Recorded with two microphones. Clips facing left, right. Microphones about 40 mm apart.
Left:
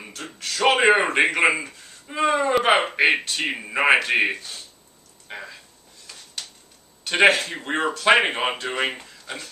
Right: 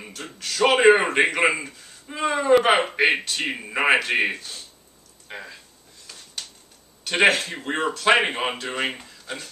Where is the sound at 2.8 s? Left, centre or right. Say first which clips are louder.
Left 1 dB; centre.